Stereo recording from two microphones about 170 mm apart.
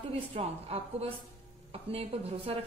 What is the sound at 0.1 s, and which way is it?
A woman's voice, 40° right (ahead or behind).